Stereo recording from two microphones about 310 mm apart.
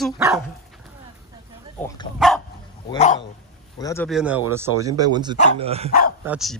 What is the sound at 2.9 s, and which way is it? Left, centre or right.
Speech, left.